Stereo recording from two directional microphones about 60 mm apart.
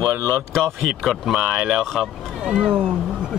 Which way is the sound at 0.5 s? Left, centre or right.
Centre.